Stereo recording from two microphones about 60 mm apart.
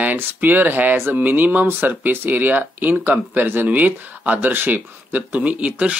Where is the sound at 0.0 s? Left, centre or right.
Right.